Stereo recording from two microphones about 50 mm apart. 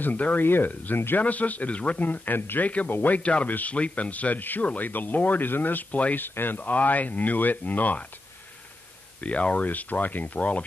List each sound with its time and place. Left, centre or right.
0.0 s speech: left
0.9 s speech: left
1.2 s a man's voice: left
2.0 s speech: left
2.6 s a man's voice: left
2.9 s speech: left
3.2 s a man's voice: left
6.1 s speech: left
9.2 s speech: left